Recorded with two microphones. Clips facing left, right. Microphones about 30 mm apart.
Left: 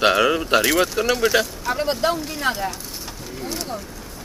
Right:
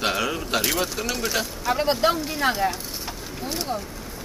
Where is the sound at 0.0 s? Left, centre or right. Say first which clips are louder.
Left 8 dB; left.